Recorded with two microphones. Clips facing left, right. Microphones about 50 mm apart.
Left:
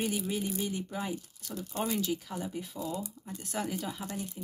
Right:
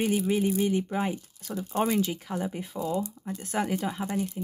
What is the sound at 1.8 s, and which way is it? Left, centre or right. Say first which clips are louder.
Speech: right 6 dB; right.